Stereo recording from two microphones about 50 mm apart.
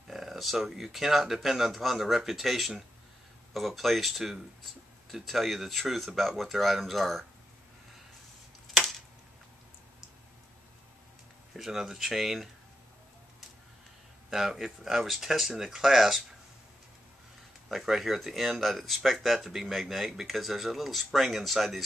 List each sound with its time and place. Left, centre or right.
0.1 s speech: centre
11.5 s speech: centre
14.3 s speech: centre
17.6 s speech: centre